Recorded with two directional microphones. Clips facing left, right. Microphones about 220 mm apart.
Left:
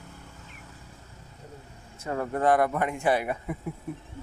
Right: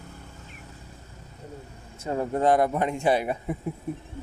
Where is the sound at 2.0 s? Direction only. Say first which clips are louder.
Right 2 dB; 20° right (ahead or behind).